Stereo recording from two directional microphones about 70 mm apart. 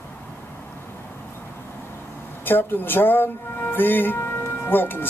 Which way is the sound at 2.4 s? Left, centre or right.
Left.